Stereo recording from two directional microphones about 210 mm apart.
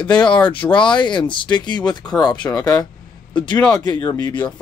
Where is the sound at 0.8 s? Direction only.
20° left (ahead or behind).